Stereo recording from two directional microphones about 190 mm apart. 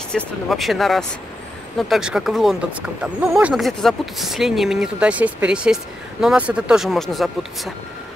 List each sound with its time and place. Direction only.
0.1 s speech: centre (ahead or behind)